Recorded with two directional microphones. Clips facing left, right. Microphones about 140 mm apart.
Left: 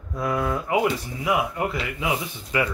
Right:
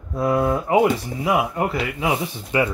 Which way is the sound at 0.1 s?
30° right (ahead or behind).